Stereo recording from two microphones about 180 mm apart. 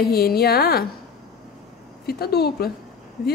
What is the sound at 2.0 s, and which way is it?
Speech, 60° left (ahead or behind).